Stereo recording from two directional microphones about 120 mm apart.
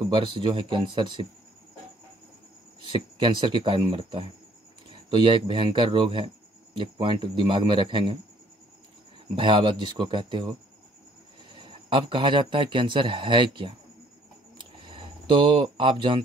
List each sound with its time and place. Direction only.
0.0 s speech: 45° right (ahead or behind)
2.9 s a man's voice: 45° right (ahead or behind)
9.3 s speech: 45° right (ahead or behind)
11.5 s a man's voice: 45° right (ahead or behind)
14.9 s speech: 45° right (ahead or behind)